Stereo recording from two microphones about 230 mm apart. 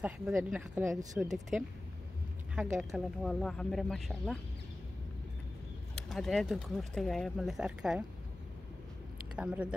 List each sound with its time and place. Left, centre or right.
0.0 s speech: centre
2.5 s speech: centre
6.0 s speech: centre
9.3 s speech: centre